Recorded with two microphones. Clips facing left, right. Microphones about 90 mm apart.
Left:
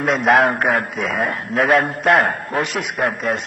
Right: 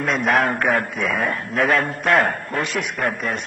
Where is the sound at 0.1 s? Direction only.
40° left (ahead or behind).